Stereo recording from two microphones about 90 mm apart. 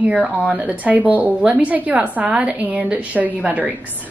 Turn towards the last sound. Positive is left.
turn(degrees=-15)  # may be behind; listen again after turning